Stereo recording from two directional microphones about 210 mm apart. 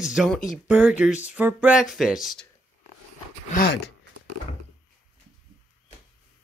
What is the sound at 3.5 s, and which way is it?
Speech, 50° left (ahead or behind).